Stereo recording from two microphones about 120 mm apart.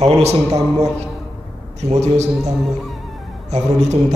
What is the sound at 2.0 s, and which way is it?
Speech, 70° right (ahead or behind).